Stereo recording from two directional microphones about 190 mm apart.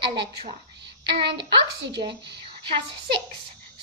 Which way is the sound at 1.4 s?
65° right (ahead or behind).